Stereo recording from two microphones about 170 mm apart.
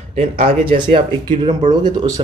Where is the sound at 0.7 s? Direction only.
30° right (ahead or behind).